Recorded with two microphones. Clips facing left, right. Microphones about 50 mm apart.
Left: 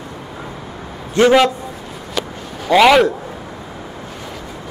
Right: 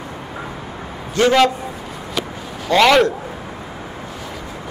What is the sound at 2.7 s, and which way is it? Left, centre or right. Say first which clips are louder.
Speech: left 2 dB; centre.